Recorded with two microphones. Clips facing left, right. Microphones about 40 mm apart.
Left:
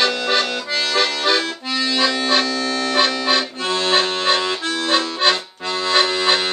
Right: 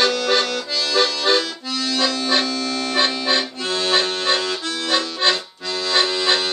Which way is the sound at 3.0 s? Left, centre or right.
Left.